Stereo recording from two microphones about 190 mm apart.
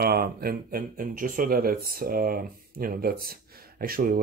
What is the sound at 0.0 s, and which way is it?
Speech, 55° right (ahead or behind).